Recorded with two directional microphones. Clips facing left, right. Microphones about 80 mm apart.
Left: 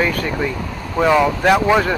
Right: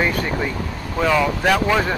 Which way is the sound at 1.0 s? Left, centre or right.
Centre.